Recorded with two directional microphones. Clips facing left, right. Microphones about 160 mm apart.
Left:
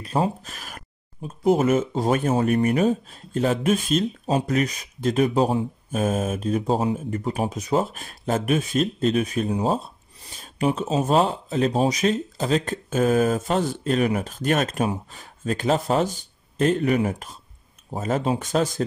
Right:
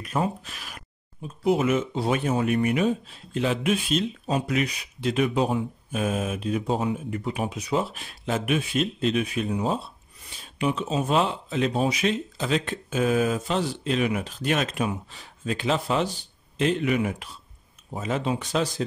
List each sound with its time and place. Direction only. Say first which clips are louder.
0.0 s speech: left 3 dB; 30° left (ahead or behind); by 18.9 s 50° left (ahead or behind)